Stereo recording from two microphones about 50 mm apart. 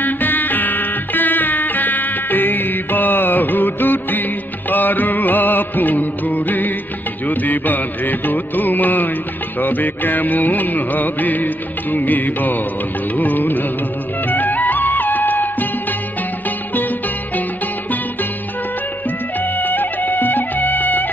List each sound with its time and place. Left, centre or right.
0.0 s music: left
19.4 s music: left